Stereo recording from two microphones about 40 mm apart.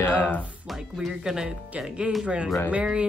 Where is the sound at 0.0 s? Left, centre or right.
Left.